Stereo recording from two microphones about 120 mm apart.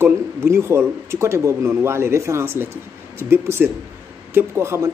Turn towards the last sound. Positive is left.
turn(degrees=-25)  # may be behind; listen again after turning